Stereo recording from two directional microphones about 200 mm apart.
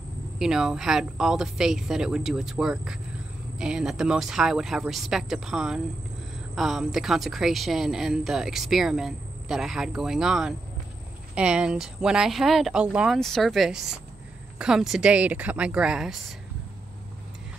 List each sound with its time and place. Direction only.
0.4 s a woman's voice: 5° right (ahead or behind)